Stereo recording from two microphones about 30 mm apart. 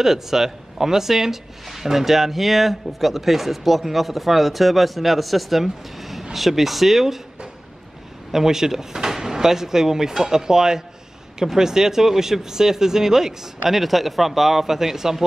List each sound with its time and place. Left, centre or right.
0.0 s speech: centre
8.3 s speech: centre
13.7 s speech: centre